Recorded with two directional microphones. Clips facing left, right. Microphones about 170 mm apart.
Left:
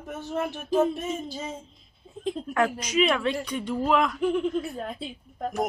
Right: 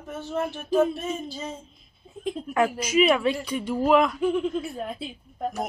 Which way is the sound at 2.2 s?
10° right (ahead or behind).